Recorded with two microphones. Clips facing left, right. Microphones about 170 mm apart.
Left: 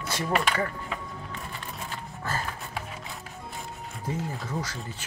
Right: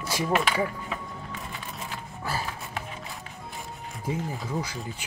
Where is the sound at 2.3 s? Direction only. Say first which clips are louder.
Right 1 dB; 10° right (ahead or behind).